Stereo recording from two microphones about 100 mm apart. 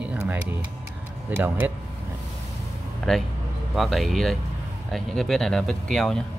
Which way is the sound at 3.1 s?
5° left (ahead or behind).